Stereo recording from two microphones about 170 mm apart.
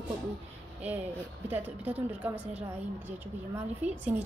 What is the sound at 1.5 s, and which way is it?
Speech, 10° right (ahead or behind).